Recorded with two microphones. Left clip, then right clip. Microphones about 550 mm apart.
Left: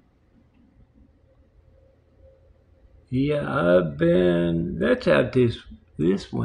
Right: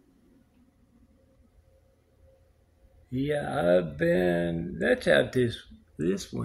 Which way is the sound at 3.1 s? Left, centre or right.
Right.